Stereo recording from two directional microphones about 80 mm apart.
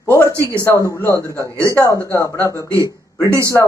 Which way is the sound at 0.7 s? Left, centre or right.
Left.